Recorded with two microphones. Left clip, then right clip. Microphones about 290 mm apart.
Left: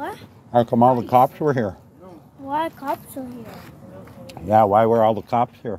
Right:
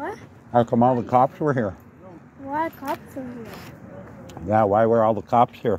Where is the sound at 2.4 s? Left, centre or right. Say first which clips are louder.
Left 2 dB; left.